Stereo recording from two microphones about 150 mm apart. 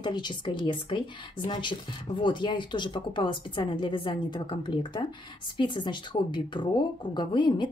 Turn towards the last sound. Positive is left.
turn(degrees=30)  # may be behind; listen again after turning